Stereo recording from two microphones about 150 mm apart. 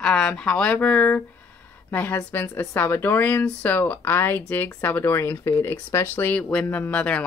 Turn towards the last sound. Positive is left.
turn(degrees=10)  # may be behind; listen again after turning